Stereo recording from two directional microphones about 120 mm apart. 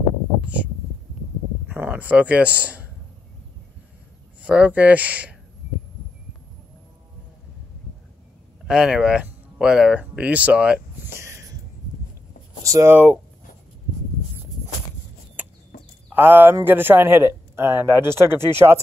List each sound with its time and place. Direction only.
1.7 s a man's voice: 15° right (ahead or behind)
4.4 s speech: 10° right (ahead or behind)
8.6 s speech: 5° right (ahead or behind)
12.6 s speech: 25° right (ahead or behind)
12.9 s speech: 15° right (ahead or behind)
15.4 s chicken: 15° right (ahead or behind)
16.1 s speech: 15° right (ahead or behind)